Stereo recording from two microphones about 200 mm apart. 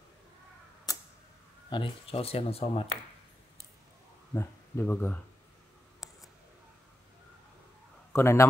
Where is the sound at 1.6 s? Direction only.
25° left (ahead or behind).